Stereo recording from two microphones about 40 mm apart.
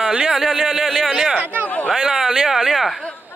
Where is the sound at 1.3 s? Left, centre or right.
Right.